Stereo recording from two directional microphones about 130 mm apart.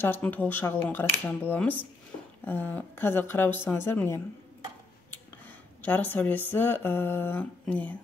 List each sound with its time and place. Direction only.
0.0 s speech: 15° left (ahead or behind)
5.8 s speech: 15° left (ahead or behind)